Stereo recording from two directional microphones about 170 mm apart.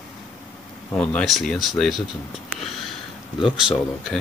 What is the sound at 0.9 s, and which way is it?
Speech, 5° left (ahead or behind).